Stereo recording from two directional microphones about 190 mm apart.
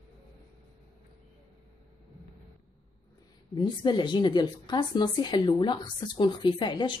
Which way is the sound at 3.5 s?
25° left (ahead or behind).